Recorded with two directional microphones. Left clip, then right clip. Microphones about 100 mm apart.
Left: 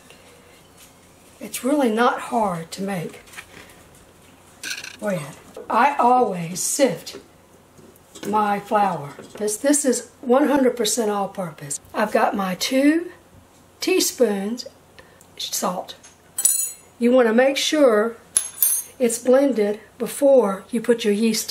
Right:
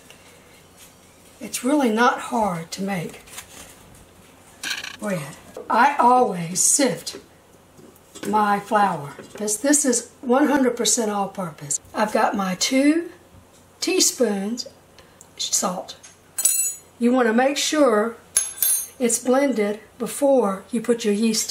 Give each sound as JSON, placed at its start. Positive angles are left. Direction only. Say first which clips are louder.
{"t": 1.4, "sound": "speech", "louder": "even", "side_deg": 15}
{"t": 5.7, "sound": "speech", "louder": "right 1 dB", "side_deg": 15}
{"t": 17.0, "sound": "speech", "louder": "left 3 dB", "side_deg": 20}